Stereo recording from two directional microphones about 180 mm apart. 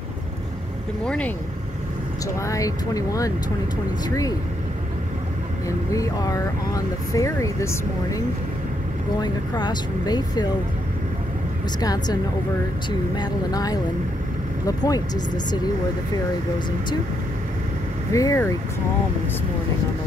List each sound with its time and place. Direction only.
1.0 s speech: 5° left (ahead or behind)
2.2 s speech: 20° left (ahead or behind)
5.9 s speech: 20° left (ahead or behind)
9.2 s speech: 25° left (ahead or behind)
11.8 s speech: 20° left (ahead or behind)
18.1 s speech: 15° left (ahead or behind)